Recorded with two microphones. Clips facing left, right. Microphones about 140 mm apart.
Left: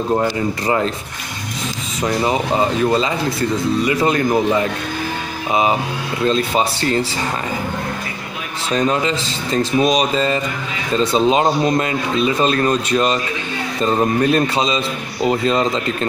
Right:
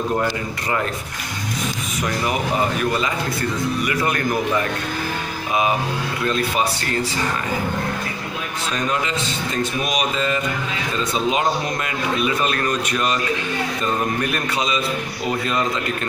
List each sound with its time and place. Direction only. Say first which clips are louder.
2.0 s speech: left 5 dB; 25° left (ahead or behind)
8.7 s speech: left 7 dB; 30° left (ahead or behind)